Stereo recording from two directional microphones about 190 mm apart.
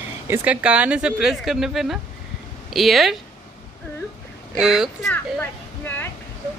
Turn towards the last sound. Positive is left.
turn(degrees=10)  # may be behind; listen again after turning